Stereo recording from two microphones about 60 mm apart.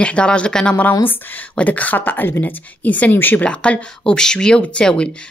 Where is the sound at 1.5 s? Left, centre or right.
Left.